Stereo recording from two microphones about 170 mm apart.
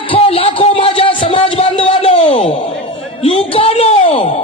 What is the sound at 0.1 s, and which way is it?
Music, 35° left (ahead or behind).